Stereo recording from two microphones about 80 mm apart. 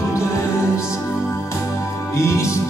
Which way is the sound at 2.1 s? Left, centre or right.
Left.